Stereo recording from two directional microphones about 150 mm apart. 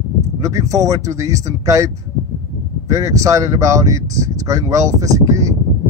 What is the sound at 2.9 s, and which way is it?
Speech, 20° right (ahead or behind).